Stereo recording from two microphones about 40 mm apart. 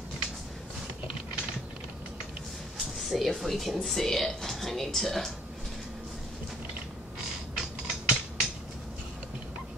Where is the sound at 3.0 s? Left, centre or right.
Centre.